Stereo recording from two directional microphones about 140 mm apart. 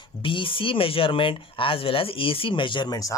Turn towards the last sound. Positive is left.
turn(degrees=25)  # may be behind; listen again after turning